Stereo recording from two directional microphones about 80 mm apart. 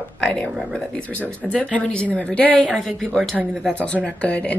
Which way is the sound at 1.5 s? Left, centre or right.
Centre.